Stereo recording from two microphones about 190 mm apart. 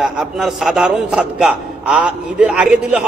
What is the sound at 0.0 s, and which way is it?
A man's voice, centre (ahead or behind).